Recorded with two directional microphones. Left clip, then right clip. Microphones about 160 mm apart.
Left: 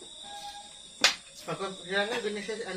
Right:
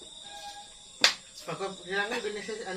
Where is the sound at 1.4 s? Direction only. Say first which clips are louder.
Even; 10° right (ahead or behind).